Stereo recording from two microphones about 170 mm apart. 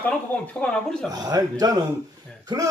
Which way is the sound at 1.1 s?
20° right (ahead or behind).